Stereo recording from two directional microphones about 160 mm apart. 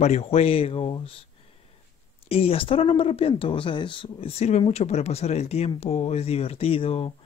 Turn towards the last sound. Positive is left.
turn(degrees=35)  # may be behind; listen again after turning